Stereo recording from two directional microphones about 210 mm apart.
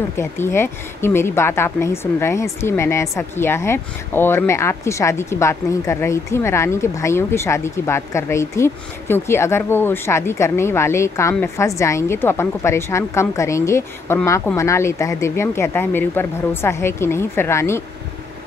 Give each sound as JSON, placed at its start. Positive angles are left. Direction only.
{"t": 0.2, "sound": "a woman's voice", "side_deg": 10}